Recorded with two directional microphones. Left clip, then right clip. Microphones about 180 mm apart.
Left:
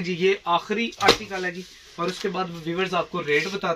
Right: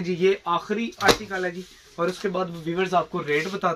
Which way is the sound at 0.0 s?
5° right (ahead or behind).